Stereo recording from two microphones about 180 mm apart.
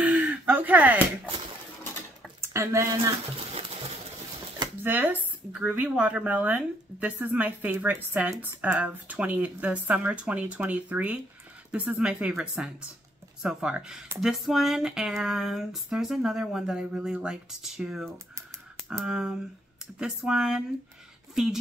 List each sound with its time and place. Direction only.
0.0 s slap: 10° right (ahead or behind)
2.4 s speech: 15° right (ahead or behind)
4.8 s a woman's voice: 10° right (ahead or behind)